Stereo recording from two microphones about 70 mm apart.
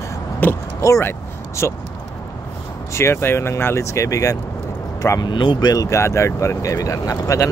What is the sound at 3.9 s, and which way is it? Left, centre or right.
Speech, left.